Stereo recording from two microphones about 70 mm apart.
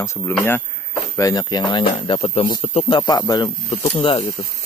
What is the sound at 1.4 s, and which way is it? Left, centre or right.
Speech, left.